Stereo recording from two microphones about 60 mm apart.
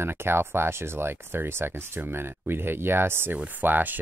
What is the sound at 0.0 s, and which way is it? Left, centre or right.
Speech, right.